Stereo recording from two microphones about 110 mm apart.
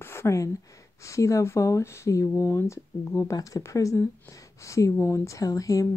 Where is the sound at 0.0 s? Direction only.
25° left (ahead or behind).